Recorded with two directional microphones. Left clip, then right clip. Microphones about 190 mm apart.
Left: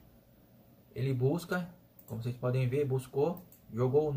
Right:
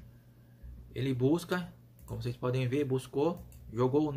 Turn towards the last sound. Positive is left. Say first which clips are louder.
# even
turn(degrees=-45)  # may be behind; listen again after turning